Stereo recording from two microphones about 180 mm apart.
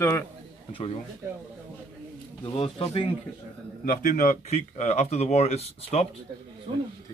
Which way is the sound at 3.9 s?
50° left (ahead or behind).